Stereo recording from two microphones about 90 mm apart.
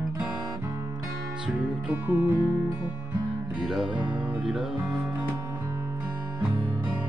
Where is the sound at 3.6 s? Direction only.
10° right (ahead or behind).